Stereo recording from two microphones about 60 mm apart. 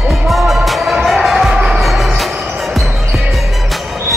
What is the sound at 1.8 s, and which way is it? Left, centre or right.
Music, centre.